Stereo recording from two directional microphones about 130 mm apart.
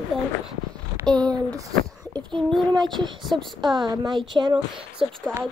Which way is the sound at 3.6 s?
35° right (ahead or behind).